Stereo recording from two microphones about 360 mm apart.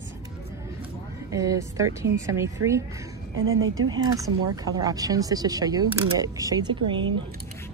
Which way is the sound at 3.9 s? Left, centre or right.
Centre.